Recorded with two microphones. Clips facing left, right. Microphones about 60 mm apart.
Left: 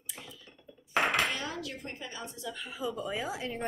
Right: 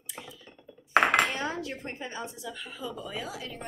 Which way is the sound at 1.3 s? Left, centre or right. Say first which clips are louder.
Right 4 dB; right.